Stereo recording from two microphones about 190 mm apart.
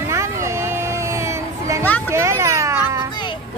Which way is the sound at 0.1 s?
15° right (ahead or behind).